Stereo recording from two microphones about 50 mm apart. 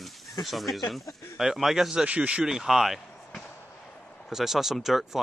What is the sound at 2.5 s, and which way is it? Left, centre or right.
Speech, centre.